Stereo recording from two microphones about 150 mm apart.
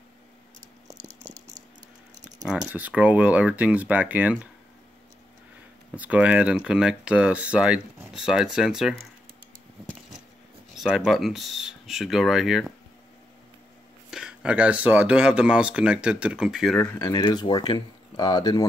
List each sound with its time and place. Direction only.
2.7 s speech: 10° right (ahead or behind)
5.9 s speech: 10° right (ahead or behind)
10.8 s speech: centre (ahead or behind)
14.1 s speech: 5° right (ahead or behind)
17.0 s speech: 25° left (ahead or behind)